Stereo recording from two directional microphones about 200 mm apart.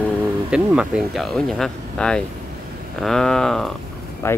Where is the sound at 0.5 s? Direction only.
5° right (ahead or behind).